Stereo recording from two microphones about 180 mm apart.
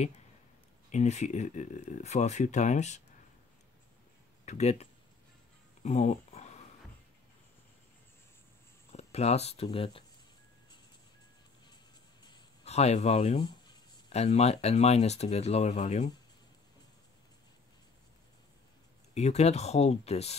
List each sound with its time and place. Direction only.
0.9 s speech: 40° left (ahead or behind)
4.5 s speech: 40° left (ahead or behind)
5.8 s a sound: 40° left (ahead or behind)
8.9 s speech: 35° left (ahead or behind)
12.6 s speech: 35° left (ahead or behind)
19.1 s speech: 40° left (ahead or behind)